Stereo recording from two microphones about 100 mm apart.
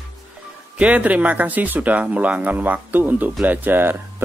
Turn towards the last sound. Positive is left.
turn(degrees=-20)  # may be behind; listen again after turning